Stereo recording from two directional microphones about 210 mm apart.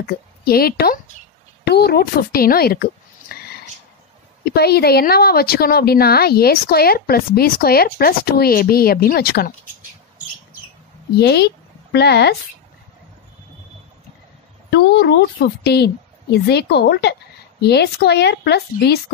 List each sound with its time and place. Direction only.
0.0 s a woman's voice: 45° left (ahead or behind)
3.3 s a sound: 50° left (ahead or behind)
4.5 s a woman's voice: 50° left (ahead or behind)
11.1 s speech: 50° left (ahead or behind)
14.7 s a woman's voice: 55° left (ahead or behind)